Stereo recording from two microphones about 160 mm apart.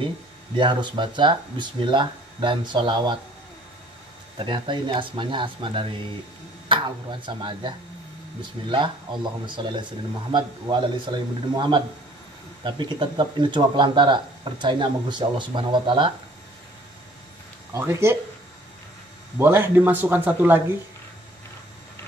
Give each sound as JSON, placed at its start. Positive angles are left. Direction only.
{"t": 0.6, "sound": "speech", "side_deg": -30}
{"t": 4.4, "sound": "speech", "side_deg": -30}
{"t": 17.7, "sound": "speech", "side_deg": -15}
{"t": 19.3, "sound": "speech", "side_deg": -15}